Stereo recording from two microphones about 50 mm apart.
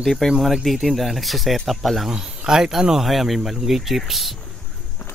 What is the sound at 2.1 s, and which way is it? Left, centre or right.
Speech, centre.